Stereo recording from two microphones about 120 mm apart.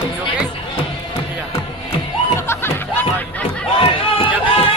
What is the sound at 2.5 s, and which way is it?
Music, 20° left (ahead or behind).